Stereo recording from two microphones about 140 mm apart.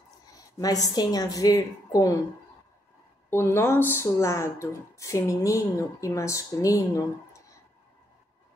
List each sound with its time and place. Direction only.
0.3 s a woman's voice: 25° left (ahead or behind)
3.3 s speech: 20° left (ahead or behind)